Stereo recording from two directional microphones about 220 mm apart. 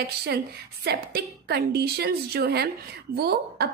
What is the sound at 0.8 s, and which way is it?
A woman's voice, 45° right (ahead or behind).